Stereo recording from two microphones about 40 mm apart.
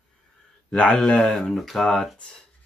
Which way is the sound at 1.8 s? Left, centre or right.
Centre.